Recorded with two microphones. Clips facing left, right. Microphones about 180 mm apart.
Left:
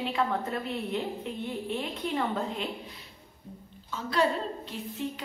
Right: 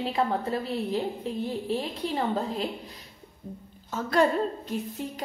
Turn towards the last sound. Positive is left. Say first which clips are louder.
# right 3 dB
turn(degrees=-45)  # may be behind; listen again after turning